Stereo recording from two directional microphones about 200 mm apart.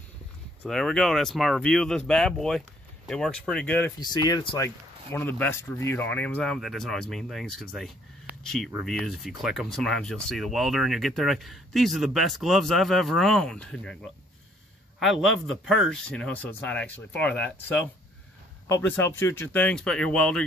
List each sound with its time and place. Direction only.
0.7 s speech: centre (ahead or behind)
4.0 s speech: 20° left (ahead or behind); by 20.4 s 5° left (ahead or behind)